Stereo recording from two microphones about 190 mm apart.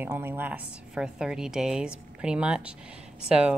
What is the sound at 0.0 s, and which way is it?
Speech, 10° right (ahead or behind).